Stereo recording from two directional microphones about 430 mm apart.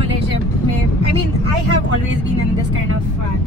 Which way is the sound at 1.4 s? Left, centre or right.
Right.